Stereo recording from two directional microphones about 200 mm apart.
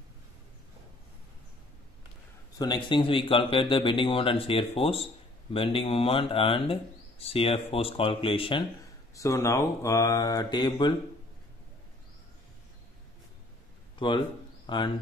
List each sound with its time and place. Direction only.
2.6 s speech: 20° left (ahead or behind)
13.9 s a man's voice: 25° left (ahead or behind)